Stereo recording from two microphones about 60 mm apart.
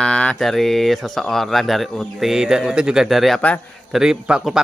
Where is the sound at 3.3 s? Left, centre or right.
Left.